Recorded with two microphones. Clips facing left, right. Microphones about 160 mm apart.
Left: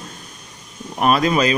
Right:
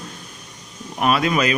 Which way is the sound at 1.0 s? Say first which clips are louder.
Left 2 dB; 40° left (ahead or behind).